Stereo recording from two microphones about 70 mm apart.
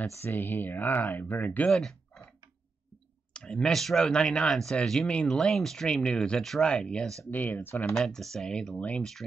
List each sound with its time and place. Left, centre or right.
0.0 s speech: left
1.7 s speech: centre
3.3 s speech: centre
7.2 s speech: left
7.9 s speech: centre